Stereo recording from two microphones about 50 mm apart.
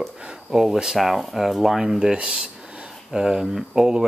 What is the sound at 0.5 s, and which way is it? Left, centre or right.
Speech, centre.